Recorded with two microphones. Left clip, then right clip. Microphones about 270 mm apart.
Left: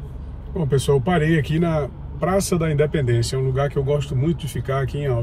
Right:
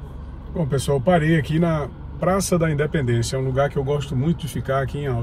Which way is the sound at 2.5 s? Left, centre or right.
Centre.